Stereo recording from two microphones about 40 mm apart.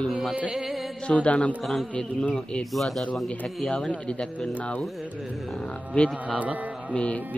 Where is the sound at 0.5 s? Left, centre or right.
Centre.